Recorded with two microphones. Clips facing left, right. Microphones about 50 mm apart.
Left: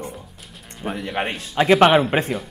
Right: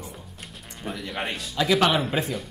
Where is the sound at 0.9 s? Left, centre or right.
Left.